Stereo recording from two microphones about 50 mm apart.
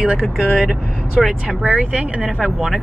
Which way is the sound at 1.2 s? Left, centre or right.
Centre.